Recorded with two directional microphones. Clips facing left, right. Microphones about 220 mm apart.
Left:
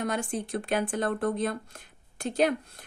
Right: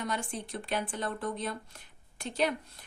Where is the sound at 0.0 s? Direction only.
50° left (ahead or behind).